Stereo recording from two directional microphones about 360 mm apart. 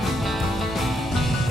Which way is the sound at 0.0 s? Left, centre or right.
Centre.